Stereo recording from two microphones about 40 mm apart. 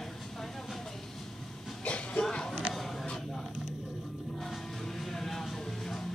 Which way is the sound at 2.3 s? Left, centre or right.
Left.